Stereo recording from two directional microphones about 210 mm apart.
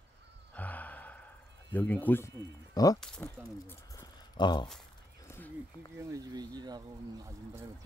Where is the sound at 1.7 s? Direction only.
10° left (ahead or behind).